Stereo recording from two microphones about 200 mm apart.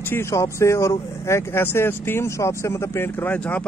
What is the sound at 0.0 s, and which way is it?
Speech, 10° left (ahead or behind).